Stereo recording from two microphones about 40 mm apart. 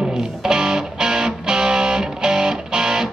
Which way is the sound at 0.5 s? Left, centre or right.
Centre.